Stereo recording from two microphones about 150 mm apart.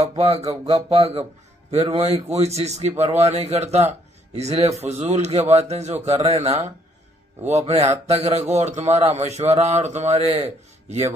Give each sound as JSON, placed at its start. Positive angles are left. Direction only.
{"t": 0.0, "sound": "speech", "side_deg": -40}